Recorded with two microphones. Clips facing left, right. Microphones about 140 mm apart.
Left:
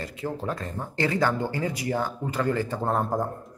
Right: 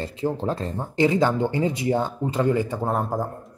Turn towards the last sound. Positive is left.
turn(degrees=-5)  # may be behind; listen again after turning